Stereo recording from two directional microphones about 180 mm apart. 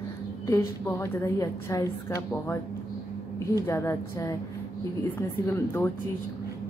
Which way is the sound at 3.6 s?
15° left (ahead or behind).